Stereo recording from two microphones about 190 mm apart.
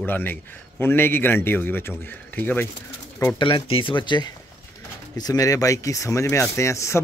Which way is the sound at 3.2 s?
20° left (ahead or behind).